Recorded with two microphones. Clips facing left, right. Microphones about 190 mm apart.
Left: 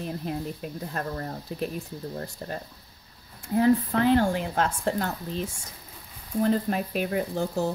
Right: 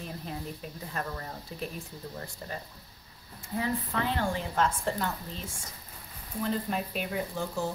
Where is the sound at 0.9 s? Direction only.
40° left (ahead or behind).